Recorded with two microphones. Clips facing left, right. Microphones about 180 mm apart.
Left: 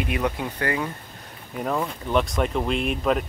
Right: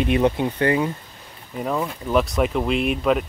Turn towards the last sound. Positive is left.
turn(degrees=0)  # may be behind; listen again after turning